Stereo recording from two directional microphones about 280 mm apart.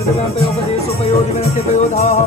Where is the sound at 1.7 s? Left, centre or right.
Left.